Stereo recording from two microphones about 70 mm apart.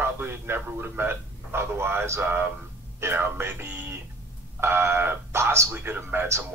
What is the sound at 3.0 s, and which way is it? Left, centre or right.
Speech, right.